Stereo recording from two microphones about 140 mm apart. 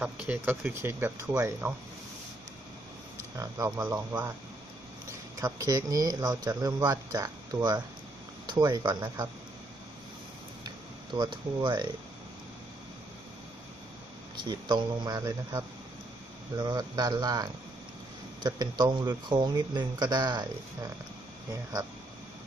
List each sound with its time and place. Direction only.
0.0 s speech: 10° right (ahead or behind)
3.3 s speech: 25° right (ahead or behind)
3.8 s speech: 10° right (ahead or behind)
5.4 s speech: 25° right (ahead or behind)
11.1 s speech: 35° right (ahead or behind)
14.3 s speech: 35° right (ahead or behind)